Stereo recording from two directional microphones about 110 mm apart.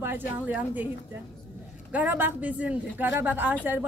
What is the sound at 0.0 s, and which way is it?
Speech, 15° right (ahead or behind).